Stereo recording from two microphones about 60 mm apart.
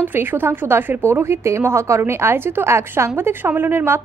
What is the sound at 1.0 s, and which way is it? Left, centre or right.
A woman's voice, right.